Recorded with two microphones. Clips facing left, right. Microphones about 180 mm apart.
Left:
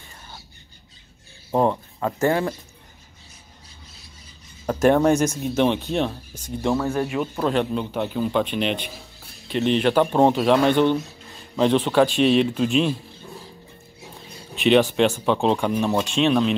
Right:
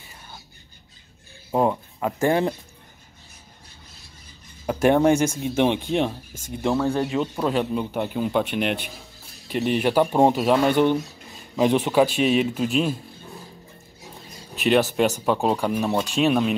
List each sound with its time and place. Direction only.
1.5 s speech: 5° right (ahead or behind)
4.6 s speech: 15° right (ahead or behind)
6.6 s speech: centre (ahead or behind)
7.4 s speech: 10° right (ahead or behind)
14.5 s speech: 5° right (ahead or behind)